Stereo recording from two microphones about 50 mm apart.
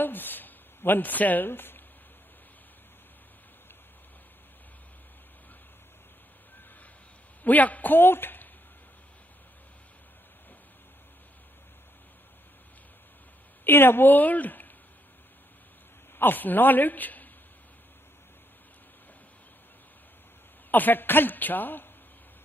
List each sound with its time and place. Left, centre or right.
0.0 s a sound: left
7.4 s a man's voice: left
13.7 s a man's voice: left
16.2 s a man's voice: left
20.7 s a man's voice: left